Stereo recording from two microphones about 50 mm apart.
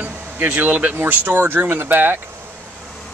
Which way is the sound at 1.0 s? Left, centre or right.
Right.